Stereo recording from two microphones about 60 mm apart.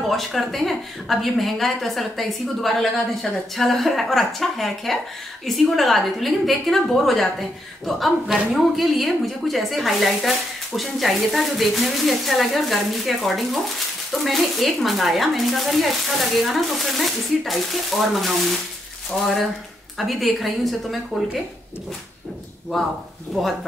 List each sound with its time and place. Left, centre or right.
0.1 s a woman's voice: centre